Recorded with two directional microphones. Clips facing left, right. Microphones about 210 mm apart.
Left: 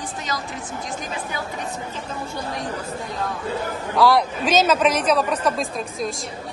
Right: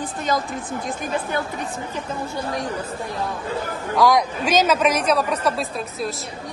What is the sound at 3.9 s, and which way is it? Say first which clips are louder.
A man's voice: even; 15° right (ahead or behind).